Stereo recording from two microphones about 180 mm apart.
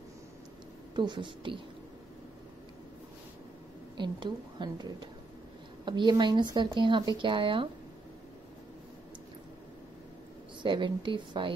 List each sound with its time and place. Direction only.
0.9 s speech: 25° right (ahead or behind)
3.9 s speech: 25° right (ahead or behind)
10.6 s speech: 25° right (ahead or behind)